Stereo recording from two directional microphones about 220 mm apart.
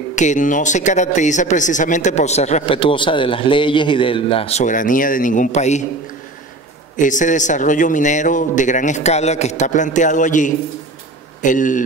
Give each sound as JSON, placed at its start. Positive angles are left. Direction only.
{"t": 0.1, "sound": "speech", "side_deg": 35}
{"t": 7.0, "sound": "speech", "side_deg": 35}